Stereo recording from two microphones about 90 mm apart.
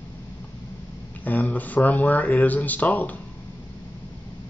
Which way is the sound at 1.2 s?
20° left (ahead or behind).